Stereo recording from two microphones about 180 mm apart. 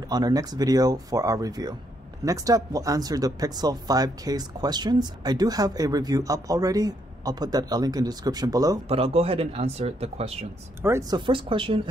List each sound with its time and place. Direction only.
0.1 s speech: 20° right (ahead or behind)
8.8 s speech: 35° right (ahead or behind)
10.8 s speech: 15° right (ahead or behind)